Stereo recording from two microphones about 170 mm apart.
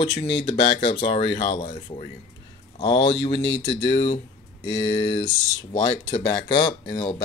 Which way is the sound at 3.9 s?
40° left (ahead or behind).